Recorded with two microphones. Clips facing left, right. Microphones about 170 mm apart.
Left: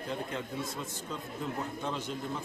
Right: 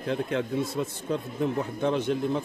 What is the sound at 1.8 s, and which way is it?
Speech, 65° right (ahead or behind).